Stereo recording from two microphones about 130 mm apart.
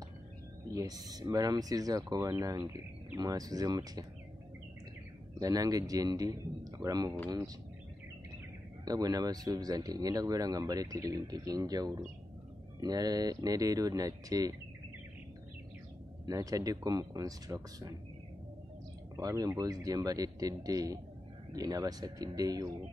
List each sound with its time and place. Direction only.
0.7 s speech: 30° right (ahead or behind)
5.4 s speech: 25° right (ahead or behind)
8.8 s speech: 30° right (ahead or behind)
16.3 s speech: 25° right (ahead or behind)
19.1 s speech: 30° right (ahead or behind)